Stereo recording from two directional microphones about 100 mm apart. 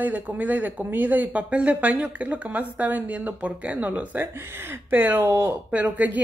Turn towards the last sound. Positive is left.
turn(degrees=-15)  # may be behind; listen again after turning